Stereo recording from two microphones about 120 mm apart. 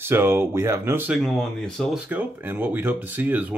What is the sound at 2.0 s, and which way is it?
Speech, 15° right (ahead or behind).